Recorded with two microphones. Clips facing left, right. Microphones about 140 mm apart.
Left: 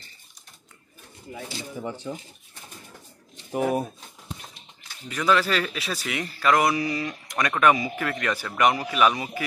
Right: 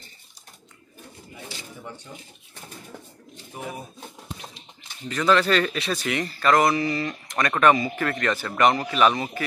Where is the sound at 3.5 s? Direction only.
75° left (ahead or behind).